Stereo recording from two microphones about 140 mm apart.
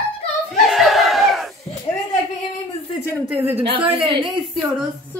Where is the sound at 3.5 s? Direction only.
40° right (ahead or behind).